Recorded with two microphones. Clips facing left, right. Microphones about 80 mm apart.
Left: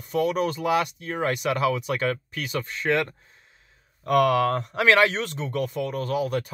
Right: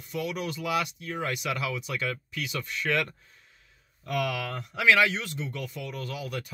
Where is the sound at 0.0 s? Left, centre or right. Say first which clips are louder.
Left 9 dB; left.